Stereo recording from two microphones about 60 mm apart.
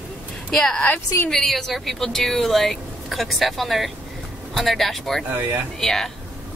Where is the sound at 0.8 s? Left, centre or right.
Left.